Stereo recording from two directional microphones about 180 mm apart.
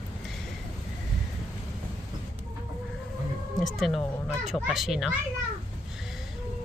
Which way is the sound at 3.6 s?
Centre (ahead or behind).